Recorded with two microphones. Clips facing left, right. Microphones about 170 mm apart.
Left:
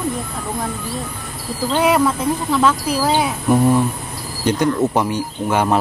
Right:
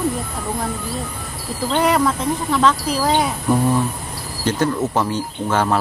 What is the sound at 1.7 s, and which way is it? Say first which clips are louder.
A man's voice: left 1 dB; 5° left (ahead or behind).